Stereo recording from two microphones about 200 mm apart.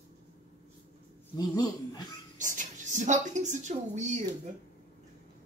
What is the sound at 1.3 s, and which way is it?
Speech, 20° left (ahead or behind).